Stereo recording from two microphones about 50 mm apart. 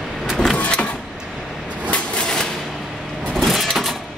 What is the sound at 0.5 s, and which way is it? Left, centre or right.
Vehicle, left.